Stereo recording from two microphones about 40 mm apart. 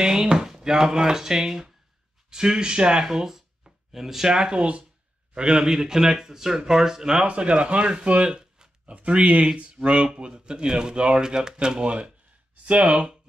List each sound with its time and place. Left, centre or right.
0.0 s speech: centre
3.1 s a sound: centre
4.3 s speech: right
7.2 s speech: right
8.3 s a sound: right
8.9 s speech: right